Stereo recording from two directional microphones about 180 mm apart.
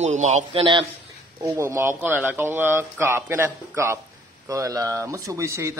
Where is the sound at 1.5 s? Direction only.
15° right (ahead or behind).